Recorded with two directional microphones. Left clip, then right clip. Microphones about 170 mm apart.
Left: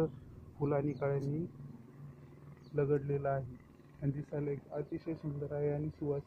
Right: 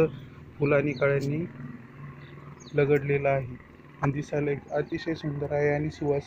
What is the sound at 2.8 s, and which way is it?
Speech, 5° right (ahead or behind).